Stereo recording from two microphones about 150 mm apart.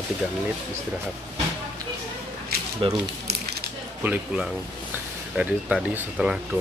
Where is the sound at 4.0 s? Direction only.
10° right (ahead or behind).